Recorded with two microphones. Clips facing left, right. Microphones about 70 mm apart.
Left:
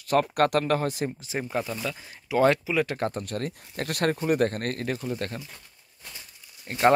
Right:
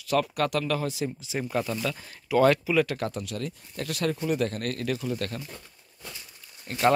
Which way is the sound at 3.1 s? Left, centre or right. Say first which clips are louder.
Left 2 dB; left.